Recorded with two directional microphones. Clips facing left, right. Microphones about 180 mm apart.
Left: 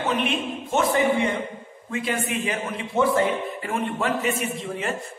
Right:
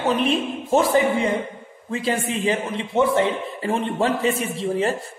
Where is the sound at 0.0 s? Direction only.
35° right (ahead or behind).